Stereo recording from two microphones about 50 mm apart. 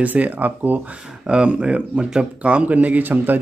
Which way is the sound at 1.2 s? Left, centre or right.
Right.